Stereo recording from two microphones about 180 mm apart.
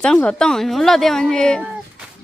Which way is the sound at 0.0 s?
5° left (ahead or behind).